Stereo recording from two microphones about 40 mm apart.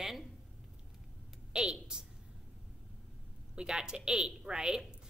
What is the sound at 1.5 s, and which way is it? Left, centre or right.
Speech, right.